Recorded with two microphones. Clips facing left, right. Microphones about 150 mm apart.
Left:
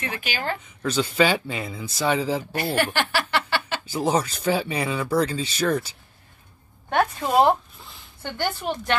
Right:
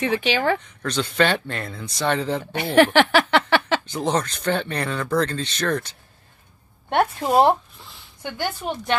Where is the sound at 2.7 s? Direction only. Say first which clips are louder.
Right 10 dB; 90° right.